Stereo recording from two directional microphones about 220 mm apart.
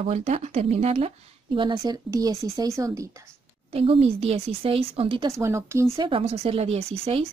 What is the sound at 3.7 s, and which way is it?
Speech, 25° right (ahead or behind).